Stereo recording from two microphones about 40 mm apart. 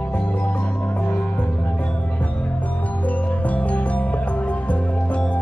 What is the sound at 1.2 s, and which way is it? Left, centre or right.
Music, left.